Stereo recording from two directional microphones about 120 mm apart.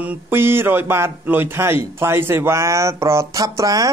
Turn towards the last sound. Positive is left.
turn(degrees=-30)  # may be behind; listen again after turning